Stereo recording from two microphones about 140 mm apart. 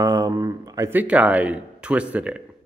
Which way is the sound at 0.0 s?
25° right (ahead or behind).